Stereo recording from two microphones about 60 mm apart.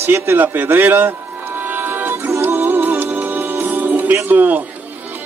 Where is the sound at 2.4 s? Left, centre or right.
Right.